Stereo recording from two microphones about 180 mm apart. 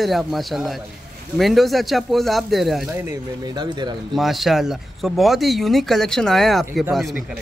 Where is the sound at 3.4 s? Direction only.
25° right (ahead or behind).